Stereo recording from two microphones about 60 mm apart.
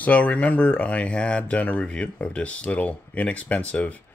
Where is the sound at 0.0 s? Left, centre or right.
Left.